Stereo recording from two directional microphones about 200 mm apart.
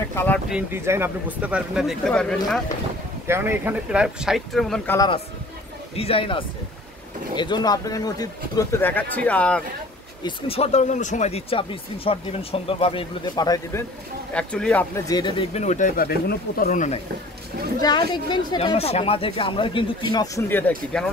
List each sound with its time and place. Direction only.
0.1 s speech: 10° left (ahead or behind)
0.5 s speech: 10° right (ahead or behind)
3.3 s speech: 10° right (ahead or behind)
4.9 s speech: 20° left (ahead or behind)
10.2 s speech: 30° left (ahead or behind)
14.3 s speech: 5° left (ahead or behind)
15.0 s speech: 20° left (ahead or behind); by 17.0 s 40° left (ahead or behind)
17.7 s speech: 20° left (ahead or behind); by 21.1 s 5° left (ahead or behind)